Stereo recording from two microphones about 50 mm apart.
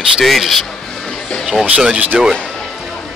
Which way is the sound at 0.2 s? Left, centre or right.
Centre.